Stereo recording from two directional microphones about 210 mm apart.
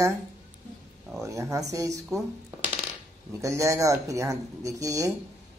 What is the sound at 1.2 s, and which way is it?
Speech, 15° right (ahead or behind).